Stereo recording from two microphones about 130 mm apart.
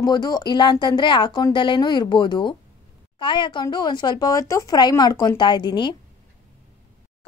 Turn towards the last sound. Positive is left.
turn(degrees=35)  # may be behind; listen again after turning